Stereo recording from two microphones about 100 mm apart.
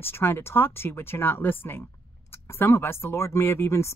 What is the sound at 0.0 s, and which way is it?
Speech, 25° left (ahead or behind).